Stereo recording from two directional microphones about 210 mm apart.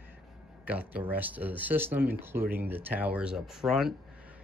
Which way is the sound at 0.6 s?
5° right (ahead or behind).